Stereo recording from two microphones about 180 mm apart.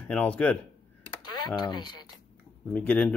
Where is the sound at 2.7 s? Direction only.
10° left (ahead or behind).